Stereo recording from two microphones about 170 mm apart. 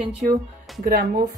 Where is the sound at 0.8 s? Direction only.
60° right (ahead or behind).